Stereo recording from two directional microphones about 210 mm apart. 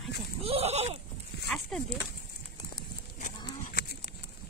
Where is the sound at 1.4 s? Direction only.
Centre (ahead or behind).